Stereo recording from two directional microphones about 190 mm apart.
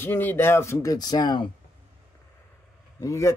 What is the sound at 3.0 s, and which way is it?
Speech, 15° left (ahead or behind).